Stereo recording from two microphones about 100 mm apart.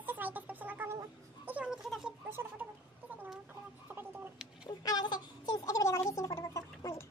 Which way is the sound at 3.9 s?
20° right (ahead or behind).